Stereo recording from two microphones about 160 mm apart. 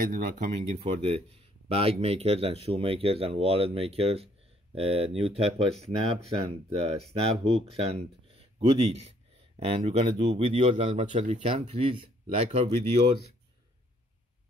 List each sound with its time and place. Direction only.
0.0 s speech: 60° right (ahead or behind)
0.7 s speech: 35° right (ahead or behind)